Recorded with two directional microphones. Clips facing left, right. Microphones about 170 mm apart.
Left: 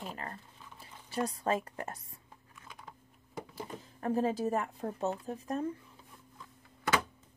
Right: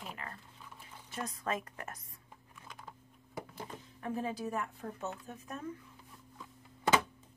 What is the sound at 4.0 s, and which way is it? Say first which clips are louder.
Speech: left 7 dB; 40° left (ahead or behind).